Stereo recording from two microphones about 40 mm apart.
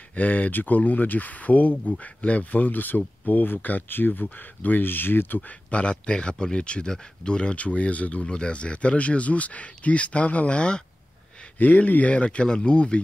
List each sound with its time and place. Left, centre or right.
0.1 s speech: left
5.7 s speech: left
11.5 s speech: left
11.9 s speech: left